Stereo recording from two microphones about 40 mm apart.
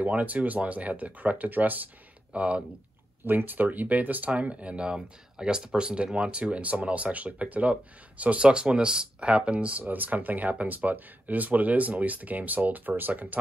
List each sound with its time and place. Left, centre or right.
0.0 s speech: right
2.3 s speech: right
3.3 s speech: right
8.5 s speech: right